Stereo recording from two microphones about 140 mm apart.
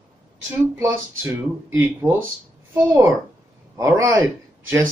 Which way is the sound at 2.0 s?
20° right (ahead or behind).